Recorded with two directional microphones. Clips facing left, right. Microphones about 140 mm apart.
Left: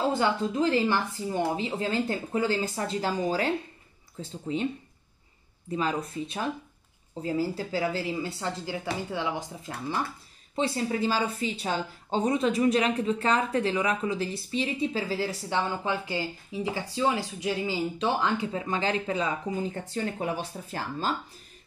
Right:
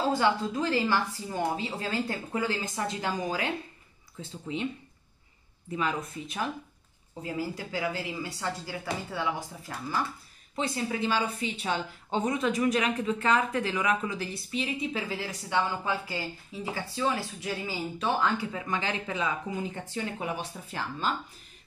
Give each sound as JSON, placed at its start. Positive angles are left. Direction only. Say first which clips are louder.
{"t": 0.2, "sound": "a woman's voice", "louder": "left 1 dB", "side_deg": 25}
{"t": 5.7, "sound": "a woman's voice", "louder": "left 2 dB", "side_deg": 35}
{"t": 7.5, "sound": "speech", "louder": "left 3 dB", "side_deg": 30}
{"t": 10.5, "sound": "a woman's voice", "louder": "left 3 dB", "side_deg": 35}
{"t": 18.5, "sound": "a woman's voice", "louder": "left 4 dB", "side_deg": 30}